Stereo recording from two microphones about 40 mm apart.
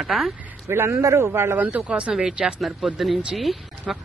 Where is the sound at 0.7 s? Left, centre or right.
Right.